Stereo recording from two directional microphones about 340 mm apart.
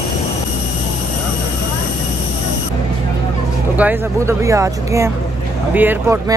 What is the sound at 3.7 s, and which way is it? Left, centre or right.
Speech, centre.